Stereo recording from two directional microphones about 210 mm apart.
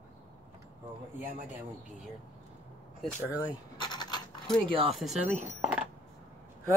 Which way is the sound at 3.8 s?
20° left (ahead or behind).